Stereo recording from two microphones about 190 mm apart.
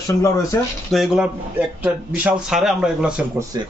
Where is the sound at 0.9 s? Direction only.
5° right (ahead or behind).